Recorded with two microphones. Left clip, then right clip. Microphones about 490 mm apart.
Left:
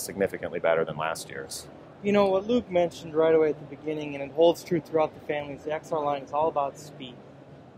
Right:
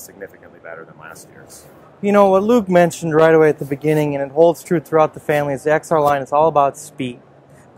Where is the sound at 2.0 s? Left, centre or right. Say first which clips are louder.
Right 11 dB; right.